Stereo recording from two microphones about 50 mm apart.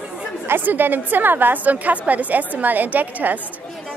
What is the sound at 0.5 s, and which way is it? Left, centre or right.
A woman's voice, right.